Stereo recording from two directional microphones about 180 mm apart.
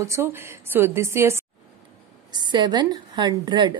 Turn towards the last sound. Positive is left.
turn(degrees=-25)  # may be behind; listen again after turning